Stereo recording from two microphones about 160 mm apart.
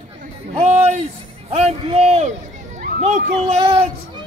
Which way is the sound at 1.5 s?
40° right (ahead or behind).